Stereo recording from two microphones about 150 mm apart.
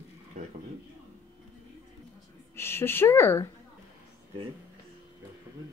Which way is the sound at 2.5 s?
15° left (ahead or behind).